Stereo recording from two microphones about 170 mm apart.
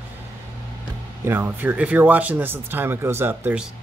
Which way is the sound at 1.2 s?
15° right (ahead or behind).